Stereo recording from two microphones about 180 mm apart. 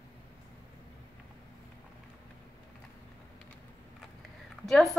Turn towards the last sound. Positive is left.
turn(degrees=0)  # may be behind; listen again after turning